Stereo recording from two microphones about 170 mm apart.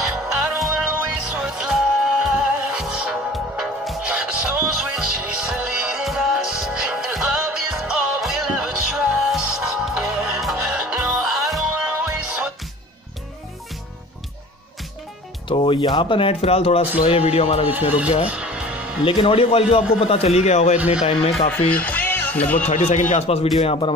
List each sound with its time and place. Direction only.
0.0 s music: 5° right (ahead or behind)
15.4 s speech: 30° left (ahead or behind)
18.2 s music: 5° right (ahead or behind)
19.0 s speech: 30° left (ahead or behind)
20.7 s speech: 10° right (ahead or behind)
21.0 s speech: 35° left (ahead or behind)
21.5 s speech: 10° left (ahead or behind)
22.7 s speech: 40° left (ahead or behind)